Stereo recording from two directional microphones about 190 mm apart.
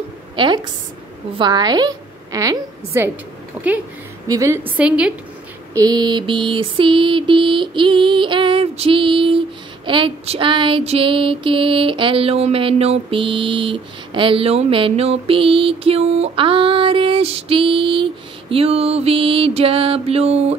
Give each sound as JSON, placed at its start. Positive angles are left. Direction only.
{"t": 0.4, "sound": "female singing", "side_deg": -25}
{"t": 1.4, "sound": "a woman's voice", "side_deg": -20}
{"t": 5.8, "sound": "female singing", "side_deg": -20}
{"t": 18.5, "sound": "music", "side_deg": -30}